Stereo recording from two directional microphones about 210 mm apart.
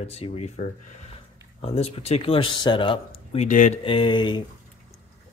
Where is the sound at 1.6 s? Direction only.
30° left (ahead or behind).